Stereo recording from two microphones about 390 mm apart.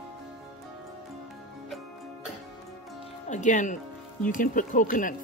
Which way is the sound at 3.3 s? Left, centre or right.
Centre.